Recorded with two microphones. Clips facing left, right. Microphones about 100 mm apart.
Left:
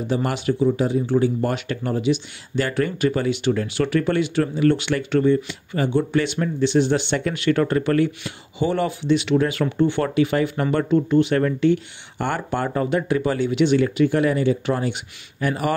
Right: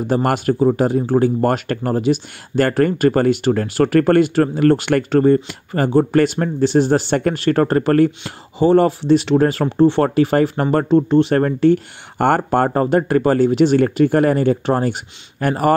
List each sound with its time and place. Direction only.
0.0 s speech: 50° right (ahead or behind)